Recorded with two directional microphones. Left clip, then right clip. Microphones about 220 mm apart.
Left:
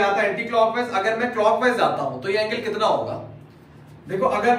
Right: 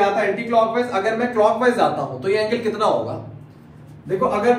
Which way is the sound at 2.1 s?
20° right (ahead or behind).